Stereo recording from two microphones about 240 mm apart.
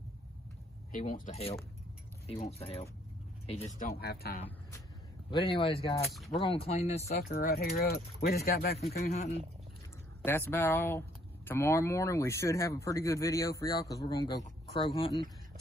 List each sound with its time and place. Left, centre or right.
0.9 s speech: left
4.0 s speech: left
5.3 s speech: centre
6.0 s speech: centre
6.4 s speech: left
7.2 s speech: left
9.0 s speech: left
10.2 s speech: centre